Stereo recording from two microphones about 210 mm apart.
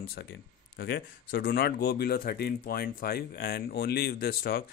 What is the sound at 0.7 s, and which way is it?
Speech, 50° left (ahead or behind).